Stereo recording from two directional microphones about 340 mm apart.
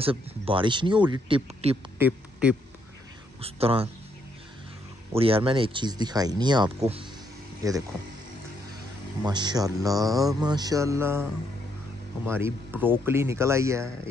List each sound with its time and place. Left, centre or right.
0.0 s speech: centre
2.0 s a sound: centre
3.3 s speech: centre
5.1 s speech: centre
9.2 s speech: centre
12.3 s speech: centre